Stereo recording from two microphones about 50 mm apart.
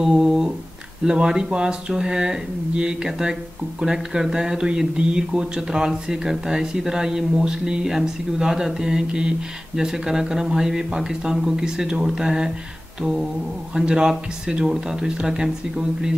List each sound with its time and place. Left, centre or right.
0.0 s a sound: centre
1.0 s speech: centre
13.7 s speech: centre